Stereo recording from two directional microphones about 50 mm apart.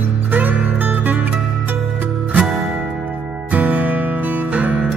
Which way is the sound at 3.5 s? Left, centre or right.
Right.